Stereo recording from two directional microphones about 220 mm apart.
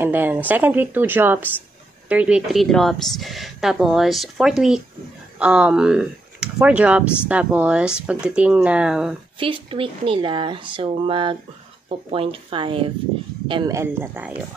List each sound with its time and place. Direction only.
0.0 s a woman's voice: 10° right (ahead or behind)
9.4 s a woman's voice: 25° right (ahead or behind)